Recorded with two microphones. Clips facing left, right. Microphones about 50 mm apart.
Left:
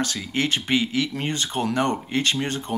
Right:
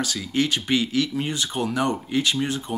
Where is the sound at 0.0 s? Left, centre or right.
Centre.